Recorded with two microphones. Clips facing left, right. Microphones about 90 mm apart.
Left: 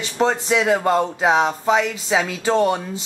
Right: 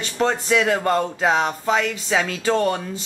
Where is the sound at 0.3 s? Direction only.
10° left (ahead or behind).